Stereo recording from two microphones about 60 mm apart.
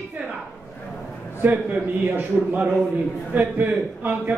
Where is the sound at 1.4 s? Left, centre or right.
Right.